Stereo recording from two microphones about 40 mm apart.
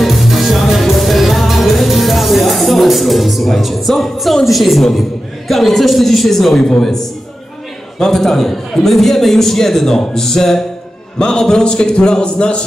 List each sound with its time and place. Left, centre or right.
0.0 s music: centre
5.5 s a man's voice: centre; by 12.6 s left